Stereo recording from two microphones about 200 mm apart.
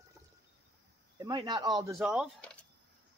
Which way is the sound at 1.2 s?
20° right (ahead or behind).